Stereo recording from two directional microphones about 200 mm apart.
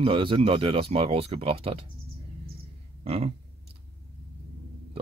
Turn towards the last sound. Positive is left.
turn(degrees=-30)  # may be behind; listen again after turning